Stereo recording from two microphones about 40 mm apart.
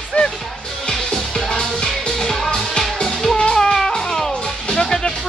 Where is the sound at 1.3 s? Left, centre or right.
Centre.